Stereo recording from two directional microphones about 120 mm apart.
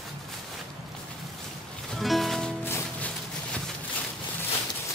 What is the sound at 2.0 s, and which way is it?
Music, centre (ahead or behind).